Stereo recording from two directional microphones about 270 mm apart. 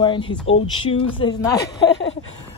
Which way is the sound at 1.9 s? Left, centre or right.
Left.